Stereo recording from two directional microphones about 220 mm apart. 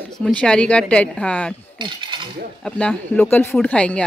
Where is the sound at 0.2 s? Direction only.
5° left (ahead or behind).